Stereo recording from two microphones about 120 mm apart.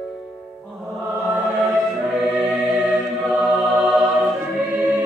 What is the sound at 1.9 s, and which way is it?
Music, centre (ahead or behind).